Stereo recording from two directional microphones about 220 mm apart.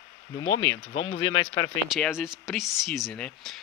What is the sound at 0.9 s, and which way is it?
Speech, 70° left (ahead or behind).